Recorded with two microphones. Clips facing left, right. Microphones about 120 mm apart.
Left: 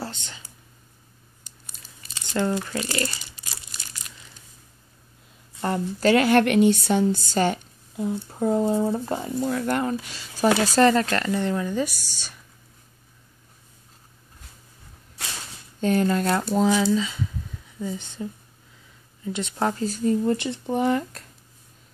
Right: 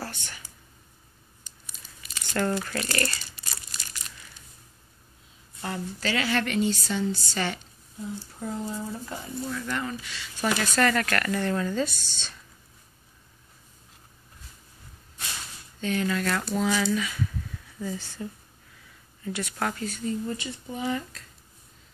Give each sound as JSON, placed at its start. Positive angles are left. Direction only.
{"t": 0.0, "sound": "whispering", "side_deg": 20}
{"t": 2.1, "sound": "speech", "side_deg": 20}
{"t": 5.6, "sound": "speech", "side_deg": 45}
{"t": 8.0, "sound": "speech", "side_deg": 60}
{"t": 9.0, "sound": "speech", "side_deg": 50}
{"t": 15.8, "sound": "speech", "side_deg": 40}
{"t": 16.7, "sound": "speech", "side_deg": 20}
{"t": 20.5, "sound": "speech", "side_deg": 65}